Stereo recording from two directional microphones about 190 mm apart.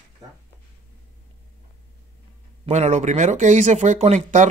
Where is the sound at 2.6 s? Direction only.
35° right (ahead or behind).